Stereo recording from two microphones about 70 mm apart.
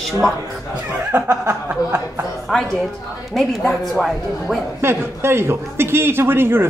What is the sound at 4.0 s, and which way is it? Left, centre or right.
Speech, centre.